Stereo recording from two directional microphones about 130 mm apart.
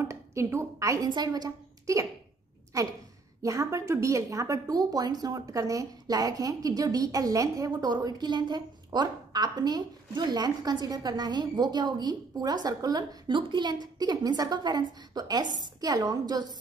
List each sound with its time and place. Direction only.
0.1 s a woman's voice: 20° right (ahead or behind)